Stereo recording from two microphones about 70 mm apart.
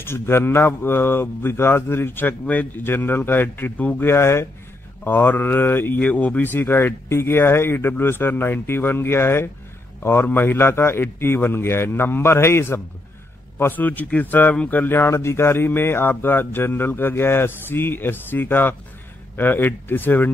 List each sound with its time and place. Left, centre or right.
0.0 s speech: left
4.1 s speech: left